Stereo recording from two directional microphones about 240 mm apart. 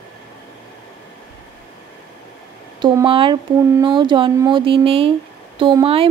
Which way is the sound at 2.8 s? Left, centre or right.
Centre.